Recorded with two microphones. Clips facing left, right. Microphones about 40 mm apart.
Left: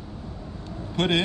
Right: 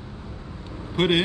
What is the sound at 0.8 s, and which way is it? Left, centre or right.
Vehicle, centre.